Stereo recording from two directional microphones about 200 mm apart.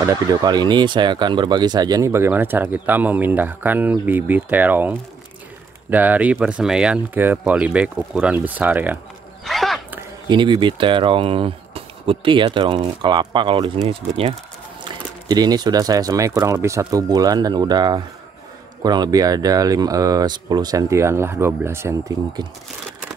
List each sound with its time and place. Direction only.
0.0 s speech: 20° right (ahead or behind)
9.4 s a sound: centre (ahead or behind)
10.2 s speech: 25° right (ahead or behind)